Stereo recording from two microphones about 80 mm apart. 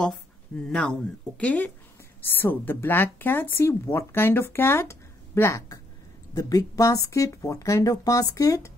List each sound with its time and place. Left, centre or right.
0.7 s speech: centre
1.4 s speech: centre; by 5.6 s left
6.3 s speech: left